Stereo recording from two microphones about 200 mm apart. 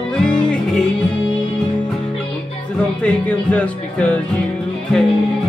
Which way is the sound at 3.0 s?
5° left (ahead or behind).